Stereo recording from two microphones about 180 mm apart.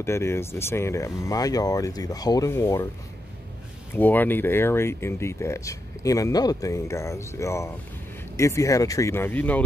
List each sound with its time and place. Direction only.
0.0 s speech: 15° left (ahead or behind)
3.9 s speech: 10° left (ahead or behind)